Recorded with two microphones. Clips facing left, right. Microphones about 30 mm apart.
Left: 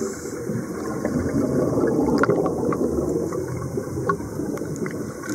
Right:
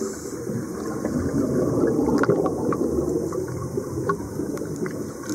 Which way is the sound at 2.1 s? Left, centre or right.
Centre.